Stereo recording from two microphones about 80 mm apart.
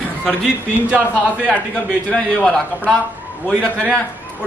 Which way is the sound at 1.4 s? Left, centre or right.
Centre.